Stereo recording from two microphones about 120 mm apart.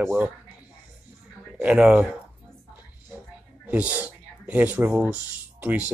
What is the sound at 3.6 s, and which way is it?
Speech, 10° right (ahead or behind).